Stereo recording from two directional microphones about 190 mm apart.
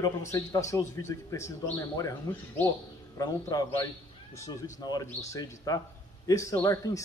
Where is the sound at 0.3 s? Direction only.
15° left (ahead or behind).